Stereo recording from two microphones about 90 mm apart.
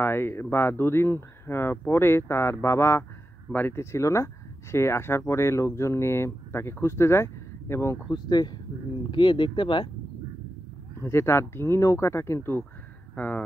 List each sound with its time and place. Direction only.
0.0 s speech: 25° left (ahead or behind)
8.1 s speech: 50° left (ahead or behind)
9.1 s speech: 65° left (ahead or behind)
11.0 s speech: 30° left (ahead or behind)
13.1 s speech: 15° left (ahead or behind)